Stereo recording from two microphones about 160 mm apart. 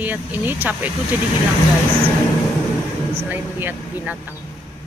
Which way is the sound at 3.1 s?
10° right (ahead or behind).